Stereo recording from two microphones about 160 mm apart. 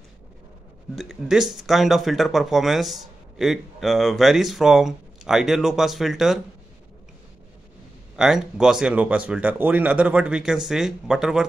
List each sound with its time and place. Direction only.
0.9 s speech: 5° right (ahead or behind)
8.2 s speech: 5° right (ahead or behind)